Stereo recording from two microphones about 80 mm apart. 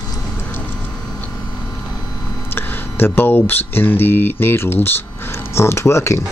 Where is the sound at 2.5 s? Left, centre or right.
Left.